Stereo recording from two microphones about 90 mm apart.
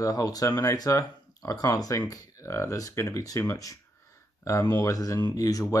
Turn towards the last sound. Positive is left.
turn(degrees=40)  # may be behind; listen again after turning